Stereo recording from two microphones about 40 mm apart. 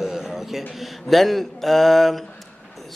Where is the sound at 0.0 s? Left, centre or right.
Centre.